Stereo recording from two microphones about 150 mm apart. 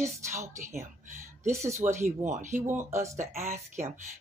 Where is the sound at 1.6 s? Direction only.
50° right (ahead or behind).